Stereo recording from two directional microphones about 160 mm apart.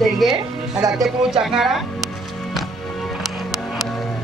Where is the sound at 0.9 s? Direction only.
5° right (ahead or behind).